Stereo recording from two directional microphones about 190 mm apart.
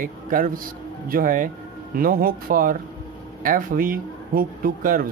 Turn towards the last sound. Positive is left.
turn(degrees=-50)  # may be behind; listen again after turning